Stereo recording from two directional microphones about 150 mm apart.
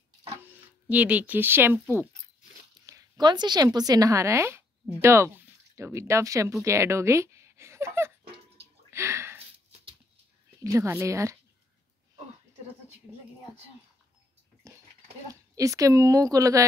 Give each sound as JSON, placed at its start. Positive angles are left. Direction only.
{"t": 0.8, "sound": "speech", "side_deg": -10}
{"t": 2.9, "sound": "a woman's voice", "side_deg": -30}
{"t": 8.9, "sound": "a sound", "side_deg": -20}
{"t": 10.6, "sound": "a woman's voice", "side_deg": -20}
{"t": 14.6, "sound": "a sound", "side_deg": -20}
{"t": 15.5, "sound": "a woman's voice", "side_deg": -20}